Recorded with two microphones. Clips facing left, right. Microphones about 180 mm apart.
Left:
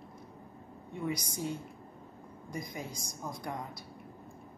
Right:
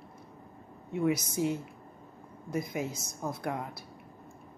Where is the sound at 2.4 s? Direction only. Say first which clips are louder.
Right 7 dB; 5° right (ahead or behind).